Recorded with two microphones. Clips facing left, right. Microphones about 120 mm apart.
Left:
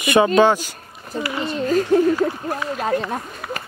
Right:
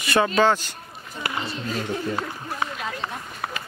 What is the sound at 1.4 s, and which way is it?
Speech, 45° left (ahead or behind).